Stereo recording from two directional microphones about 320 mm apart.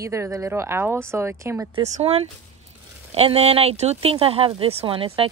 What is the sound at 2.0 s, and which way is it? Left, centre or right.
Speech, centre.